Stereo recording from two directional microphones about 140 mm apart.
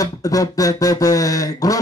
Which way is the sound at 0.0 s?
25° left (ahead or behind).